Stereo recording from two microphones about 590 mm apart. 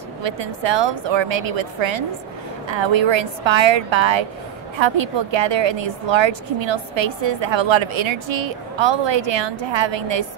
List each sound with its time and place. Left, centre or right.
0.2 s a woman's voice: right